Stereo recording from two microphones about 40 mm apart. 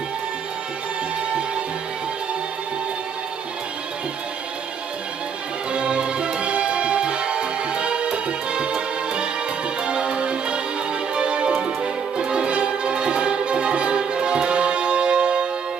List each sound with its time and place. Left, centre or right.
5.7 s music: right